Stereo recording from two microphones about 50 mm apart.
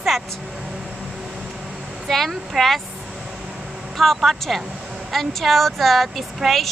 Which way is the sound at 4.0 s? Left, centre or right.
Centre.